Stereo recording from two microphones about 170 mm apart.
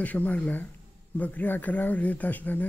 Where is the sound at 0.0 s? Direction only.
10° left (ahead or behind).